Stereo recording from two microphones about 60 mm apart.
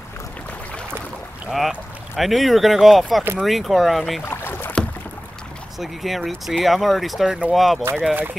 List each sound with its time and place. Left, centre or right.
2.1 s speech: centre
4.2 s boat: left
5.8 s speech: centre
7.2 s speech: right
7.5 s speech: centre